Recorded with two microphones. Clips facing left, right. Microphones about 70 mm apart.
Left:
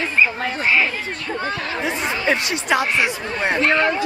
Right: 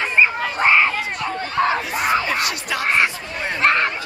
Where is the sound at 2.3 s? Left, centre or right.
Left.